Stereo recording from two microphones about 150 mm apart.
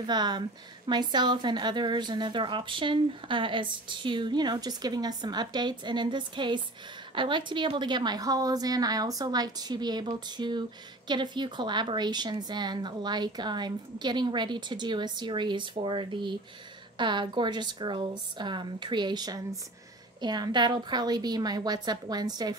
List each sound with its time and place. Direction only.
0.0 s a woman's voice: 30° right (ahead or behind)